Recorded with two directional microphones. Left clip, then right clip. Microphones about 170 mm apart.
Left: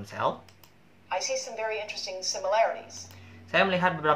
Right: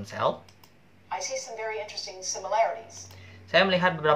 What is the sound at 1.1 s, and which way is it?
A woman's voice, 30° left (ahead or behind).